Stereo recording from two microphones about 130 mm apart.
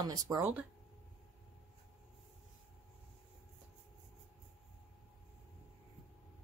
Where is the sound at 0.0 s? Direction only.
30° right (ahead or behind).